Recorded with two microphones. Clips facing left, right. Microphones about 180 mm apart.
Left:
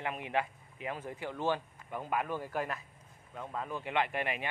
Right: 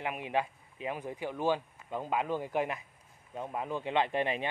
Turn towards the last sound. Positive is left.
turn(degrees=-20)  # may be behind; listen again after turning